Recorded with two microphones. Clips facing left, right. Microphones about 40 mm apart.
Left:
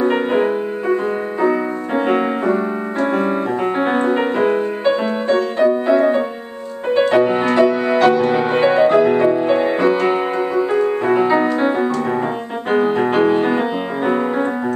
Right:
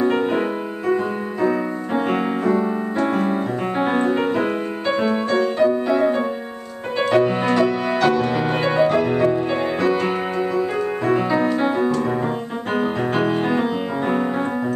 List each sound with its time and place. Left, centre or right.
0.0 s music: centre
3.0 s piano: centre
3.8 s music: centre
7.0 s music: centre